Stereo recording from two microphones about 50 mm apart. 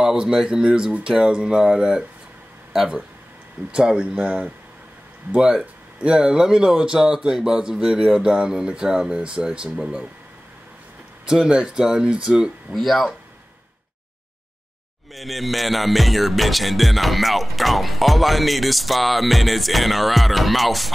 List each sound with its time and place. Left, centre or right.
0.0 s speech: centre
3.7 s speech: centre
11.2 s speech: centre
12.7 s music: centre
15.1 s music: centre